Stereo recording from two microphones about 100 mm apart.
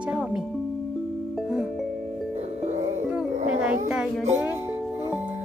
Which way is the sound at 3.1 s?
10° right (ahead or behind).